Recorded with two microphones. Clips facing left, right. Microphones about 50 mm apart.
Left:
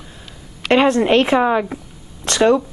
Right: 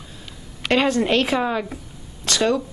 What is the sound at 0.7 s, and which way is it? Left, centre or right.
A woman's voice, left.